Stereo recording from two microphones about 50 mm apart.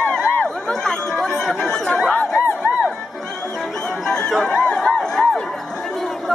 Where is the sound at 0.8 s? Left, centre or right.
Centre.